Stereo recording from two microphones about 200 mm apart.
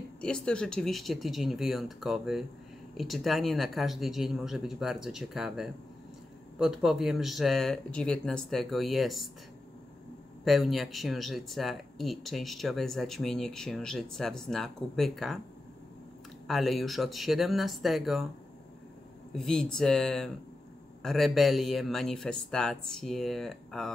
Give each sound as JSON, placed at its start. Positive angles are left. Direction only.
{"t": 0.2, "sound": "speech", "side_deg": 5}
{"t": 10.4, "sound": "speech", "side_deg": 0}
{"t": 16.4, "sound": "speech", "side_deg": 0}
{"t": 19.3, "sound": "speech", "side_deg": 5}